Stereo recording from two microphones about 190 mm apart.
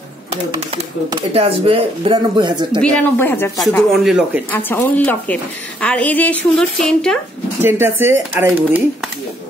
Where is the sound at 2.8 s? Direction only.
10° left (ahead or behind).